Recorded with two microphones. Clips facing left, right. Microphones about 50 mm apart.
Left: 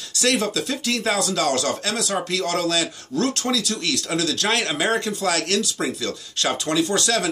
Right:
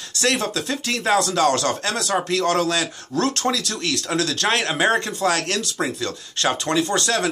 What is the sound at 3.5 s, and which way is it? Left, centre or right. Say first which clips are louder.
Speech: left 1 dB; right.